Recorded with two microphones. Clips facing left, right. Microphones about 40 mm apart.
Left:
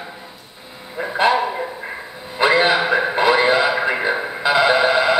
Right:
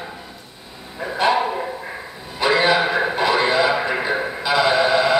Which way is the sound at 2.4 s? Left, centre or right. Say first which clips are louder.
Left 1 dB; centre.